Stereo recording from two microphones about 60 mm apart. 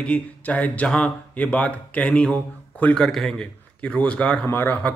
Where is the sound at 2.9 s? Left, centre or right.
Centre.